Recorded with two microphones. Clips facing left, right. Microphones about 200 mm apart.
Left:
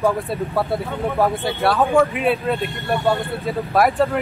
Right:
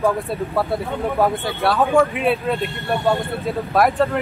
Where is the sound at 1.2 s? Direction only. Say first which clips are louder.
Left 1 dB; centre (ahead or behind).